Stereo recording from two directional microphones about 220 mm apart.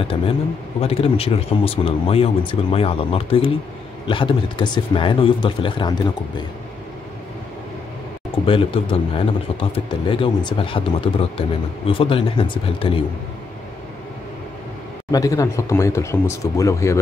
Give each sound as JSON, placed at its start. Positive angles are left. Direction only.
{"t": 0.7, "sound": "a man's voice", "side_deg": 25}
{"t": 8.5, "sound": "a man's voice", "side_deg": 25}
{"t": 15.0, "sound": "speech", "side_deg": 15}